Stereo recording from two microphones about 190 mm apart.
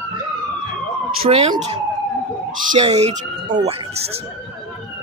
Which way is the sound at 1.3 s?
35° right (ahead or behind).